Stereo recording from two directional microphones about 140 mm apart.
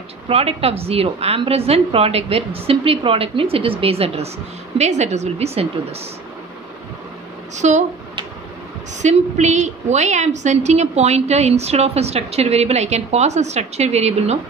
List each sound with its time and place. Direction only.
0.3 s a woman's voice: 45° right (ahead or behind)
7.5 s speech: 60° right (ahead or behind)
9.0 s a woman's voice: 55° right (ahead or behind)